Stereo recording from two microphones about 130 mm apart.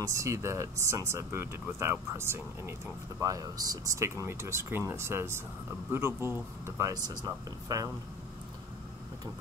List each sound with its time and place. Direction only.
0.0 s speech: 25° right (ahead or behind)